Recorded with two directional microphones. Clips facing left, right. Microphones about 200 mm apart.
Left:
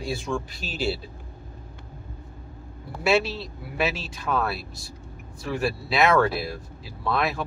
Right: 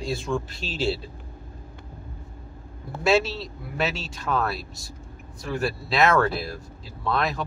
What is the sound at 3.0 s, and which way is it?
Speech, 5° left (ahead or behind).